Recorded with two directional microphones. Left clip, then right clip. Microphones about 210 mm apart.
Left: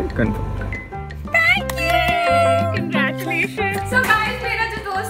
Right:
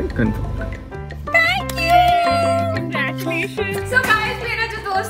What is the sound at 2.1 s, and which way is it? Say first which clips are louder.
Music: even; centre (ahead or behind).